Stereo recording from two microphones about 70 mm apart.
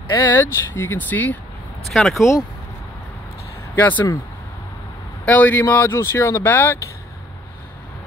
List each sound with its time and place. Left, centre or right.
0.3 s speech: left
1.9 s speech: centre
3.7 s speech: left
5.2 s speech: left
6.4 s speech: left